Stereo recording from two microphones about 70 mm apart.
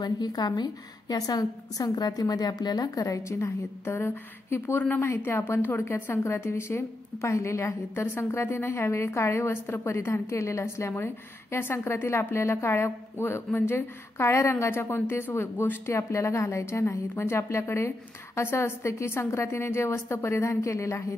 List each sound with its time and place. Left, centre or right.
0.0 s a woman's voice: left
15.9 s a woman's voice: left